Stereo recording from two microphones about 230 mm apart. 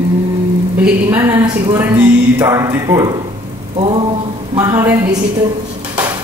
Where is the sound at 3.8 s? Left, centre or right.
Right.